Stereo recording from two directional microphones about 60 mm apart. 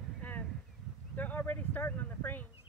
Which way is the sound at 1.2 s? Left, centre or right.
Left.